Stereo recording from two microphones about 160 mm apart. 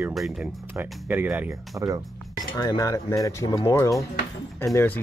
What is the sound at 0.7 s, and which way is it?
Speech, 10° right (ahead or behind).